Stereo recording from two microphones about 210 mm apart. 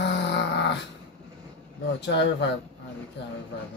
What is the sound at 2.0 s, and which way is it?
Dog, 55° left (ahead or behind).